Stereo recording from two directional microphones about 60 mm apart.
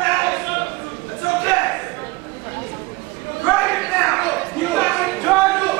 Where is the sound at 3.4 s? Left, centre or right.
Centre.